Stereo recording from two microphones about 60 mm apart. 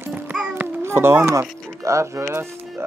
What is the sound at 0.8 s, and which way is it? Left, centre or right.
Speech, right.